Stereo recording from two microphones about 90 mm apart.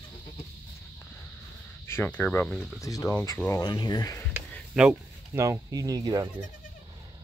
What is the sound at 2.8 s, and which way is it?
Speech, 40° left (ahead or behind).